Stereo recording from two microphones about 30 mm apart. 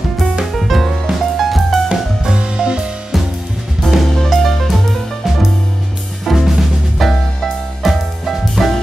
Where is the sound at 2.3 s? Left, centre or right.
Right.